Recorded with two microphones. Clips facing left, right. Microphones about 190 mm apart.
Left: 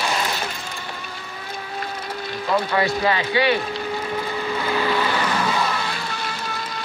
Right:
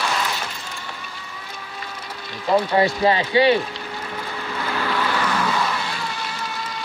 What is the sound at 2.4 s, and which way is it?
Speech, 30° right (ahead or behind).